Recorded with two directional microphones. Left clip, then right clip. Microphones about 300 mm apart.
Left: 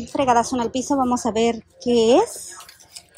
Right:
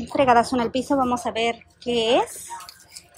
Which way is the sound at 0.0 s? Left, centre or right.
Centre.